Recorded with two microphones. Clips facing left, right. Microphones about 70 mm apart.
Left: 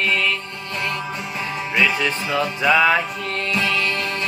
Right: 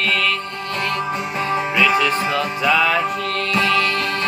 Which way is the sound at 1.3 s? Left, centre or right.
Right.